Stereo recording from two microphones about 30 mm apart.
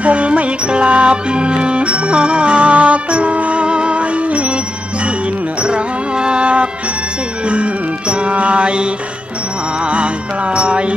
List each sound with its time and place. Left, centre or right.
0.0 s music: right
5.6 s music: right
9.8 s music: right